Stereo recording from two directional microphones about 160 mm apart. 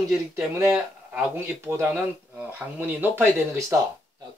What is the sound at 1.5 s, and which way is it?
Speech, 15° right (ahead or behind).